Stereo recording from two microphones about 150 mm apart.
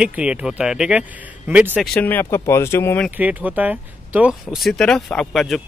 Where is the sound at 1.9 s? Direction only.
10° left (ahead or behind).